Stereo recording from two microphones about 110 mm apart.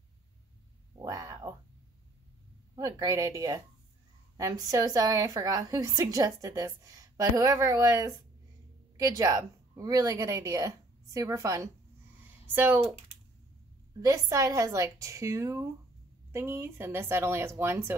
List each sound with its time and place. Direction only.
1.0 s a sound: 30° right (ahead or behind)
2.7 s a woman's voice: 30° right (ahead or behind)
12.5 s speech: 15° right (ahead or behind)
14.0 s a woman's voice: 30° right (ahead or behind)